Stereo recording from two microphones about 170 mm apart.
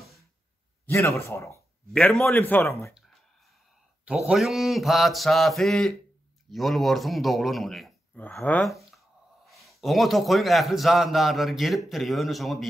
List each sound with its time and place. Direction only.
0.8 s a man's voice: 15° left (ahead or behind)
4.3 s a man's voice: centre (ahead or behind)